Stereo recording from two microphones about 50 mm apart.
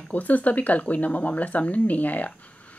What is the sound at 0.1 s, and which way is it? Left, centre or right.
Speech, left.